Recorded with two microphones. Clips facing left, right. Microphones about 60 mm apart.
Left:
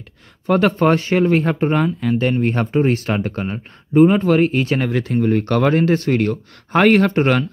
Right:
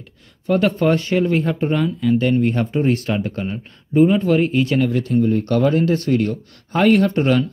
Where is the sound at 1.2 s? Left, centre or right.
Left.